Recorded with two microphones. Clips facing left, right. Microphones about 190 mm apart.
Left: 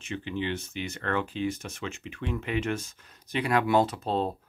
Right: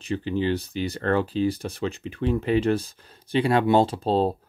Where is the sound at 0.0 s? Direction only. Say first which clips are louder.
Right 7 dB; 35° right (ahead or behind).